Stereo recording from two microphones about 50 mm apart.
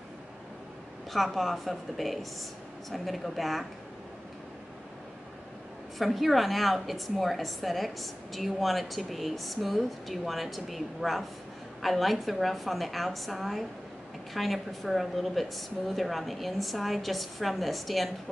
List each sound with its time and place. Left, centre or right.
1.1 s a woman's voice: centre
5.9 s a woman's voice: centre